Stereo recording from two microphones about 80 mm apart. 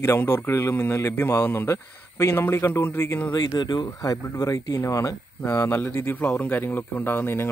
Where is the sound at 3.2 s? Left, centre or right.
Left.